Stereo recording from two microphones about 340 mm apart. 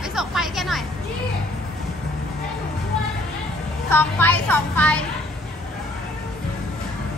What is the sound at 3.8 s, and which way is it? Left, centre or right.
A woman's voice, centre.